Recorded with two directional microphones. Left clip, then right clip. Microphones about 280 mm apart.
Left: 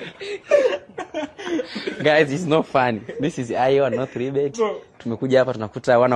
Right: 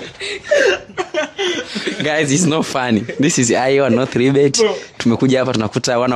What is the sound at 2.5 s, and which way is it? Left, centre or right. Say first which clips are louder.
Speech: right 1 dB; right.